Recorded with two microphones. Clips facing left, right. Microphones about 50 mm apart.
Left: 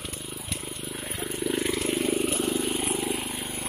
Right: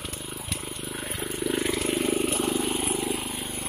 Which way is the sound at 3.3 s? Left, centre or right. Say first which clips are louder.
Even; left.